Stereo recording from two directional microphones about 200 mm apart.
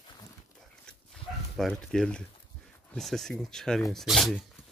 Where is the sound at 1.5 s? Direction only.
Centre (ahead or behind).